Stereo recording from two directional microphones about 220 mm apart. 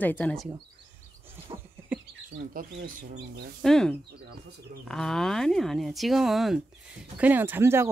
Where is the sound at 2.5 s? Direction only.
40° right (ahead or behind).